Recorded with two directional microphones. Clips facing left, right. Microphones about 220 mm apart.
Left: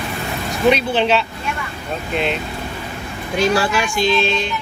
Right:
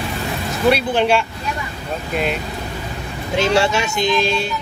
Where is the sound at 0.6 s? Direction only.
10° right (ahead or behind).